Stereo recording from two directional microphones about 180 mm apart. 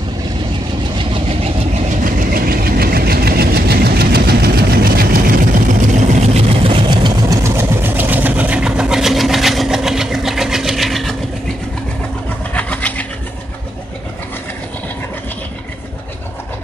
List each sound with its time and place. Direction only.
0.9 s vehicle: 30° right (ahead or behind)
1.9 s vehicle: 50° right (ahead or behind)
6.3 s vehicle: 30° right (ahead or behind); by 11.1 s centre (ahead or behind)
12.5 s a sound: 10° left (ahead or behind)